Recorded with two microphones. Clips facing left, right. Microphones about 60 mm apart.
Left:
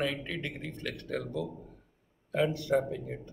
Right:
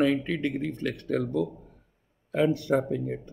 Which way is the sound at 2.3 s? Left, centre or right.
Right.